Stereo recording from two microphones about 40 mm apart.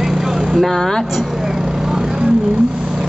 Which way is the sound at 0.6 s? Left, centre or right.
Centre.